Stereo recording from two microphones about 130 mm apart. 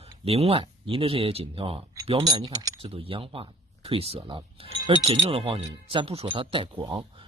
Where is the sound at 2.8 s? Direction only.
45° right (ahead or behind).